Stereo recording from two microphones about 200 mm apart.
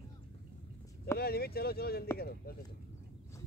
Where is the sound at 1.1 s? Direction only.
50° left (ahead or behind).